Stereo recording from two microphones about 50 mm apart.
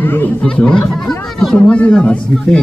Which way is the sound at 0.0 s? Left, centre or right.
Left.